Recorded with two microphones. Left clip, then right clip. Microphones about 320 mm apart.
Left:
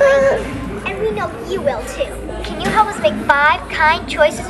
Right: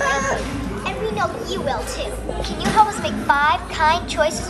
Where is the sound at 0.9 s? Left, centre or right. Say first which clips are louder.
Left 3 dB; centre.